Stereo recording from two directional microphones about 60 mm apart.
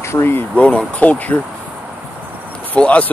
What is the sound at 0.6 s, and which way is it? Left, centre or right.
Speech, left.